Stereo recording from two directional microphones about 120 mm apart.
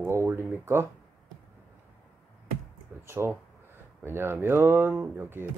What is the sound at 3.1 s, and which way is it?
Speech, 20° right (ahead or behind).